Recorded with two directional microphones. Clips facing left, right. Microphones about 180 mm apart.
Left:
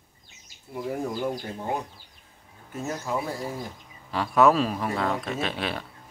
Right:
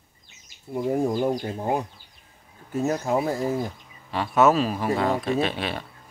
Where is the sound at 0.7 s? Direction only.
30° right (ahead or behind).